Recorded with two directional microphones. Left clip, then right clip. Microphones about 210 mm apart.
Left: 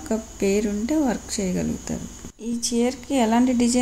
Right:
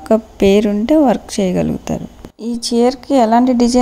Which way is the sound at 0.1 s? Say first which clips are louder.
Right 12 dB; 35° right (ahead or behind).